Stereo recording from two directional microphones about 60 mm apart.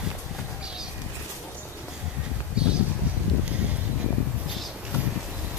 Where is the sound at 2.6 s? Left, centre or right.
Centre.